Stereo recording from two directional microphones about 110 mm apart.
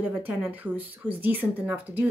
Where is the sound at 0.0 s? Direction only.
15° right (ahead or behind).